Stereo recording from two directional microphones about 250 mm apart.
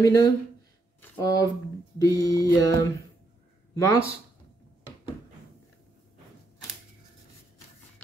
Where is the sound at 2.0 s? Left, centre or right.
Centre.